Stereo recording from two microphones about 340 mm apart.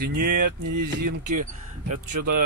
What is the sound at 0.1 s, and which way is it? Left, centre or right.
Speech, right.